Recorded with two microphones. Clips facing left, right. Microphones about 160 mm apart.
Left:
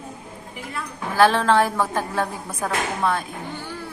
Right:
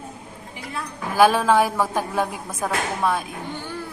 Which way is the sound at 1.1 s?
10° right (ahead or behind).